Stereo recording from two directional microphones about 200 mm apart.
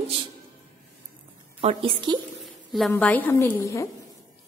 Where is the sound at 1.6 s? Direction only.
30° right (ahead or behind).